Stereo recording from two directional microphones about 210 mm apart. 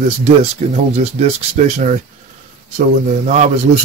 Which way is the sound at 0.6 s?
30° right (ahead or behind).